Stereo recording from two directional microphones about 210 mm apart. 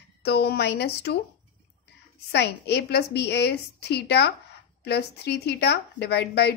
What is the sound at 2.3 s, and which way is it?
A woman's voice, 50° left (ahead or behind).